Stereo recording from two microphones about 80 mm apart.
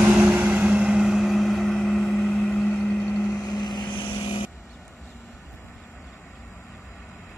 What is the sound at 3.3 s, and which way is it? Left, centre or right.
Vehicle, left.